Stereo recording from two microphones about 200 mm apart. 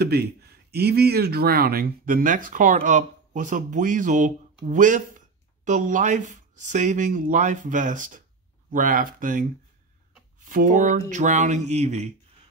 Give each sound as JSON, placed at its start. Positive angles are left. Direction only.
{"t": 0.0, "sound": "speech", "side_deg": -55}